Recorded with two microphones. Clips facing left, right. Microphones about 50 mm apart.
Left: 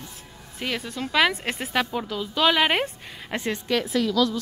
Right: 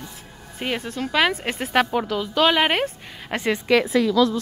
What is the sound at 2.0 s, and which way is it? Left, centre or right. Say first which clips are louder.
Speech: right 5 dB; right.